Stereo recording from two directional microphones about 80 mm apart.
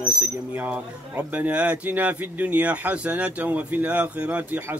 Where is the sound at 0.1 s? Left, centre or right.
Centre.